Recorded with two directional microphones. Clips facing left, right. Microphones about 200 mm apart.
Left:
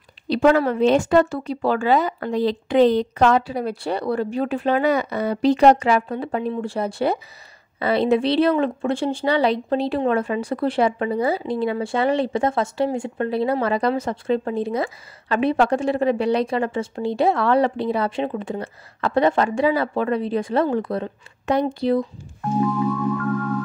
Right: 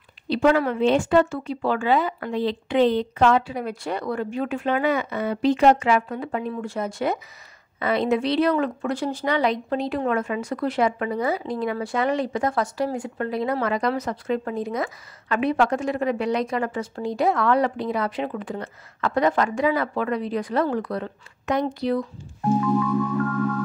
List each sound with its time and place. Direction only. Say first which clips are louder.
0.3 s a woman's voice: left 3 dB; 40° left (ahead or behind)